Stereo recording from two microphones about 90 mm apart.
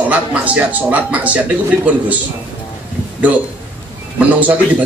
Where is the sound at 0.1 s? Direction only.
15° right (ahead or behind).